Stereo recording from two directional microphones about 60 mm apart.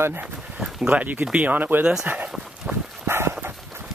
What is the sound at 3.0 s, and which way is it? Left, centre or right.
Dog, right.